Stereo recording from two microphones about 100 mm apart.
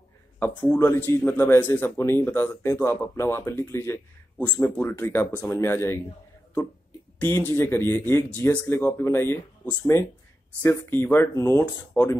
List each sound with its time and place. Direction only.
0.7 s a man's voice: 25° left (ahead or behind)
7.2 s a man's voice: 25° left (ahead or behind)